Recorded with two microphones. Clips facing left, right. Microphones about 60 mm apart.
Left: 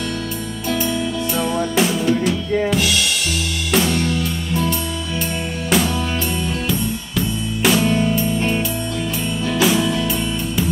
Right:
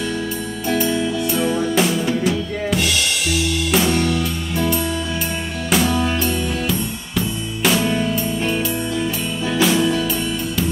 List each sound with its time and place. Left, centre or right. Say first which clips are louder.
1.4 s drum kit: even; centre
3.7 s music: left 1 dB; centre
9.6 s music: right 1 dB; centre